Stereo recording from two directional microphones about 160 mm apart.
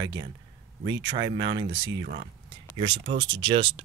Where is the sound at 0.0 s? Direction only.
25° right (ahead or behind).